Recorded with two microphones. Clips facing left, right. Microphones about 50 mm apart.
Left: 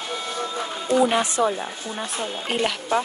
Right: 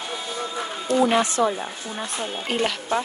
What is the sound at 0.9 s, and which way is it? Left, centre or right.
Speech, left.